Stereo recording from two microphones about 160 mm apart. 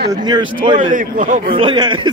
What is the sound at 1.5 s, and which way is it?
Speech, 30° right (ahead or behind).